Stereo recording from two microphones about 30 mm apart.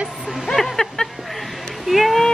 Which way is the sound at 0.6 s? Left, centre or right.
Centre.